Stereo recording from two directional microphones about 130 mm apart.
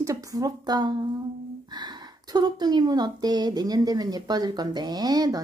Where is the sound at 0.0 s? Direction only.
25° right (ahead or behind).